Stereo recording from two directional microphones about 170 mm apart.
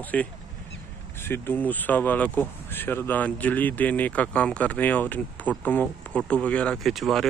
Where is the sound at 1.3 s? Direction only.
10° left (ahead or behind).